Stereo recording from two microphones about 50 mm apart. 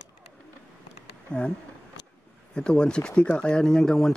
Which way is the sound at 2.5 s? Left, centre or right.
Centre.